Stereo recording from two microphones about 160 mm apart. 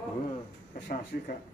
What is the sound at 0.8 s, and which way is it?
Speech, 65° left (ahead or behind).